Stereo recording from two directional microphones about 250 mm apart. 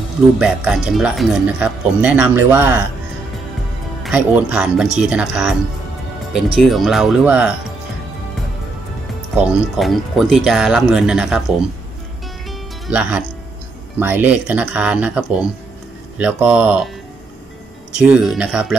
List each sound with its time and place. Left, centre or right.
0.4 s speech: centre
4.0 s speech: centre
9.4 s speech: centre
12.4 s music: centre
13.9 s speech: centre
18.0 s speech: centre